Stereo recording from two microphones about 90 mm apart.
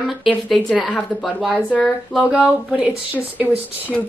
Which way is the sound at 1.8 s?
10° right (ahead or behind).